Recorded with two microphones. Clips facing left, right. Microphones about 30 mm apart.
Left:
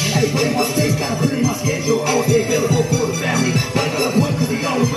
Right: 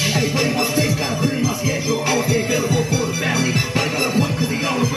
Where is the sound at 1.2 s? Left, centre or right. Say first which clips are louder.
Left 2 dB; centre.